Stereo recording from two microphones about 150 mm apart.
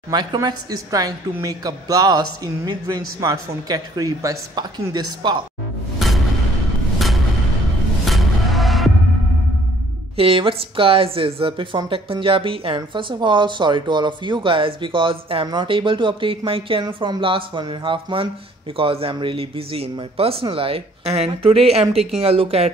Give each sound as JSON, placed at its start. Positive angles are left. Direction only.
{"t": 0.1, "sound": "a woman's voice", "side_deg": -30}
{"t": 5.9, "sound": "music", "side_deg": 0}
{"t": 8.0, "sound": "music", "side_deg": 0}
{"t": 10.1, "sound": "speech", "side_deg": -40}